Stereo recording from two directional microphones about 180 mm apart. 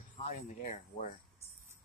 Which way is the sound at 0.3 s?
45° left (ahead or behind).